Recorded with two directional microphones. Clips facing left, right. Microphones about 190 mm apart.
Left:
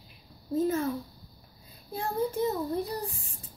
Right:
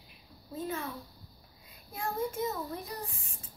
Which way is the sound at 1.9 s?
30° left (ahead or behind).